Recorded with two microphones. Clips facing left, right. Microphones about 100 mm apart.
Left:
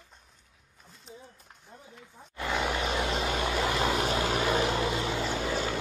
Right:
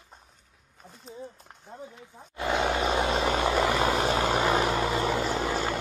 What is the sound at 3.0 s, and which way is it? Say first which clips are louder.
Vehicle: right 4 dB; 60° right (ahead or behind).